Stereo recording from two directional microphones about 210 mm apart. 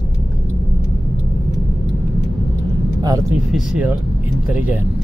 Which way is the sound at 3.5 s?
Centre (ahead or behind).